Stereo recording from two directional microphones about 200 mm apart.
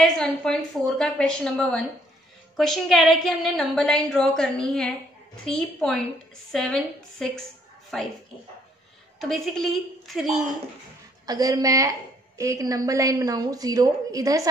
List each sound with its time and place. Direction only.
0.0 s a woman's voice: 5° left (ahead or behind)
9.2 s a woman's voice: centre (ahead or behind)
11.2 s a woman's voice: 20° right (ahead or behind)